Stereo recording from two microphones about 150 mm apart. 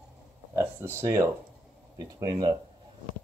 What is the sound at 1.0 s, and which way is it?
Speech, 15° right (ahead or behind).